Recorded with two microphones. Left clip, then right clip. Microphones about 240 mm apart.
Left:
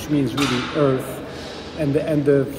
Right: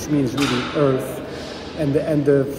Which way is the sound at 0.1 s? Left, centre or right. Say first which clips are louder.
Right 1 dB; centre.